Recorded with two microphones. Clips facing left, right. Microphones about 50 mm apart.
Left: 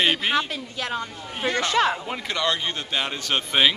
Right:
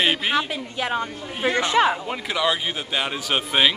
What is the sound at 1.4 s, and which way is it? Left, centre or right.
A man's voice, centre.